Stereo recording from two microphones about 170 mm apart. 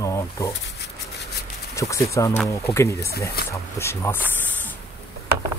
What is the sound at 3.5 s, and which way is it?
Speech, 15° left (ahead or behind).